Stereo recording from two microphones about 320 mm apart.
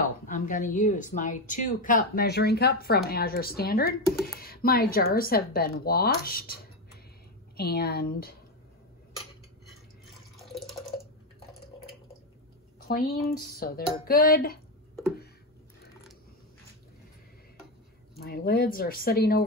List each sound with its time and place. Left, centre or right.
0.3 s speech: left
10.4 s drip: centre
12.8 s speech: left
18.2 s speech: left